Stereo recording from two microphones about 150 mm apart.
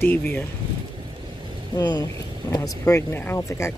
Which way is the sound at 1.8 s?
25° left (ahead or behind).